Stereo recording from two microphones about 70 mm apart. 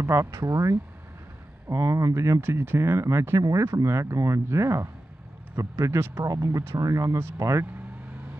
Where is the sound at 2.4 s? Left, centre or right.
Right.